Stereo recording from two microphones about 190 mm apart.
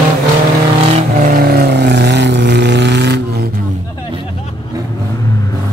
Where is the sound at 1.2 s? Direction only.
50° right (ahead or behind).